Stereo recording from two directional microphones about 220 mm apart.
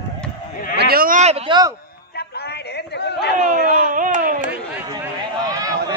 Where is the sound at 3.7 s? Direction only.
40° right (ahead or behind).